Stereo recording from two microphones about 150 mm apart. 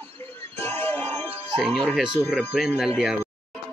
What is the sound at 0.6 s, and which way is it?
Music, 15° left (ahead or behind).